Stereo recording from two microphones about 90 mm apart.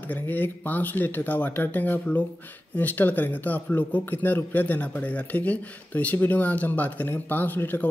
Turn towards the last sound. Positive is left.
turn(degrees=20)  # may be behind; listen again after turning